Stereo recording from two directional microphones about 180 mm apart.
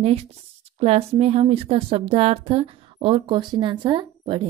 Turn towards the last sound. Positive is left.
turn(degrees=-25)  # may be behind; listen again after turning